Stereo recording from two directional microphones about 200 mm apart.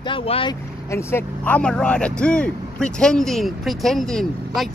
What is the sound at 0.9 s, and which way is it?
Speech, 10° left (ahead or behind).